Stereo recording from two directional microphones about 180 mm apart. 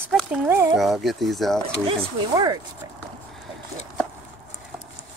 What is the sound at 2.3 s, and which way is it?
Speech, 20° right (ahead or behind).